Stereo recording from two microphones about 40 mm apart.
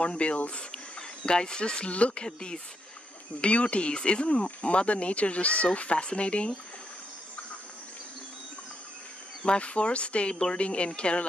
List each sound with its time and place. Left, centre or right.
0.0 s speech: left
9.4 s speech: left